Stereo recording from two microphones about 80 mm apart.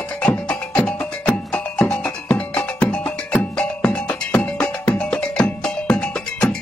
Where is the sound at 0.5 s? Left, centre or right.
Centre.